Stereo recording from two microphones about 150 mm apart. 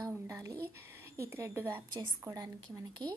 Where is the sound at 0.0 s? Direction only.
20° right (ahead or behind).